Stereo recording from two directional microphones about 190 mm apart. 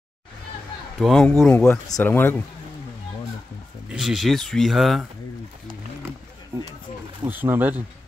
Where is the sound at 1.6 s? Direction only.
15° left (ahead or behind).